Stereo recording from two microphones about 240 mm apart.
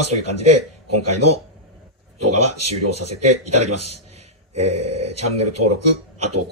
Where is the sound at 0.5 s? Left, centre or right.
Right.